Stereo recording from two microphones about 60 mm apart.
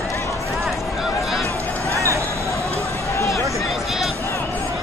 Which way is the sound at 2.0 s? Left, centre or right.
Right.